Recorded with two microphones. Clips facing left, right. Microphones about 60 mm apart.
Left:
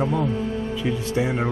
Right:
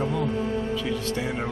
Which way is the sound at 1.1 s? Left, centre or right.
Centre.